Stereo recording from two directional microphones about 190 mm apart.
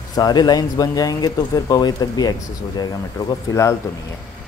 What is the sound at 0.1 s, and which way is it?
Speech, 20° left (ahead or behind).